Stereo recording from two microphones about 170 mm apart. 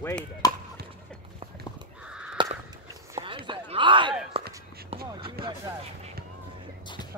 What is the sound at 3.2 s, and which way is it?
Clip-clop, 30° right (ahead or behind).